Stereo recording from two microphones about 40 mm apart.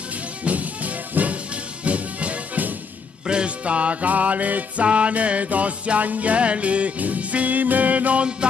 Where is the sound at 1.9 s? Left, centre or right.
Right.